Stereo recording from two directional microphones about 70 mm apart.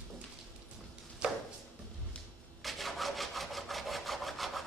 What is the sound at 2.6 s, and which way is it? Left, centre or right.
Wood, centre.